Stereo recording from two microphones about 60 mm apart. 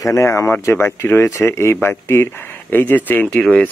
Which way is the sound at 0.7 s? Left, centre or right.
Left.